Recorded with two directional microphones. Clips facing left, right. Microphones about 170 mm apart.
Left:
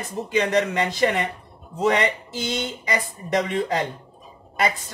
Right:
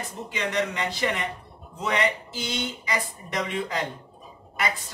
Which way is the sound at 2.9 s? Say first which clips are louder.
Left 6 dB; 45° left (ahead or behind).